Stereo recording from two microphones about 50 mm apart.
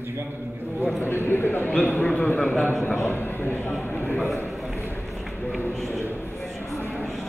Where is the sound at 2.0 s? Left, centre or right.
Left.